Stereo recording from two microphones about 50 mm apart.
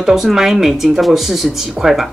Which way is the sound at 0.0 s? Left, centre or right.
Centre.